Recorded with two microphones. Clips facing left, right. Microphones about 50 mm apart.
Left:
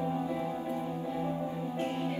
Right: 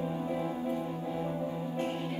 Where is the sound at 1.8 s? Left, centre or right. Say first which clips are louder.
Left 2 dB; left.